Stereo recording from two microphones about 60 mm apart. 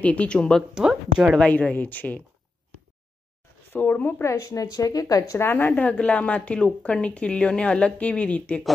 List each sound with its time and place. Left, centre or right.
0.0 s a woman's voice: left
0.8 s speech: centre
1.5 s a woman's voice: left
3.7 s speech: left
4.3 s speech: left
5.4 s a woman's voice: left